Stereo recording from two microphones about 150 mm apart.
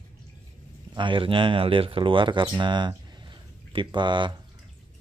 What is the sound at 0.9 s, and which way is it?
Speech, 35° right (ahead or behind).